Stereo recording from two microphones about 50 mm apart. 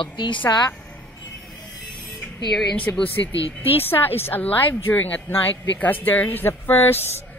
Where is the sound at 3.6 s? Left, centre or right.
Left.